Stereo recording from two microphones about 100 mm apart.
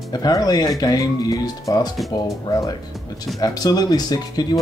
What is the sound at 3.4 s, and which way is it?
Speech, 40° left (ahead or behind).